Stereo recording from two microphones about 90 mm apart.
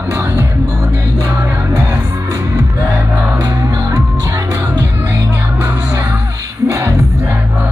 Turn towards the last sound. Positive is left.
turn(degrees=-30)  # may be behind; listen again after turning